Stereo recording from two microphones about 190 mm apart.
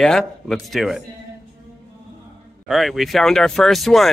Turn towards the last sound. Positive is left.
turn(degrees=0)  # may be behind; listen again after turning